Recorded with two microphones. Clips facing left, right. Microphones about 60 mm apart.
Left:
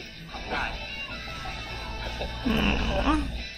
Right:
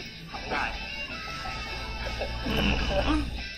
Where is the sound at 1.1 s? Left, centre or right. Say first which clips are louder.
Right 1 dB; right.